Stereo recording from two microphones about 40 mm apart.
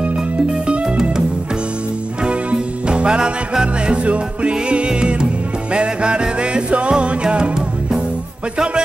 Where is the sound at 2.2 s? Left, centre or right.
Right.